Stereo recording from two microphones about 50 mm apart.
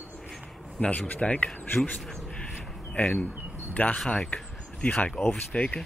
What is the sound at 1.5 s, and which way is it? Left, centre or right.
Speech, left.